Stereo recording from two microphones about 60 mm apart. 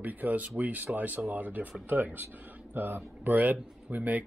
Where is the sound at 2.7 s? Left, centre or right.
Right.